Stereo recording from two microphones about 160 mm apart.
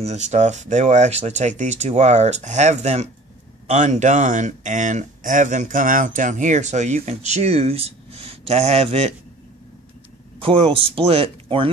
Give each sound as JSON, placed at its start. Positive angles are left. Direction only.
{"t": 0.0, "sound": "speech", "side_deg": -45}
{"t": 10.4, "sound": "speech", "side_deg": -35}